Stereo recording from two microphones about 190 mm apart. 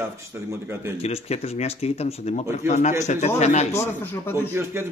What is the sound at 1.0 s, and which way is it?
Speech, 35° left (ahead or behind).